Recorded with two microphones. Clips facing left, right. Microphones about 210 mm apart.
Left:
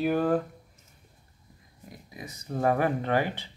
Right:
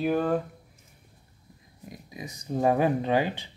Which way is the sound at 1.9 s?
15° right (ahead or behind).